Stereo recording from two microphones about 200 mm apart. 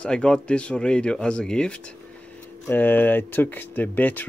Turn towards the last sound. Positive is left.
turn(degrees=10)  # may be behind; listen again after turning